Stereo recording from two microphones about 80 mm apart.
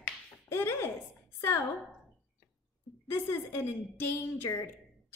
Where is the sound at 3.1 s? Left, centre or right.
Left.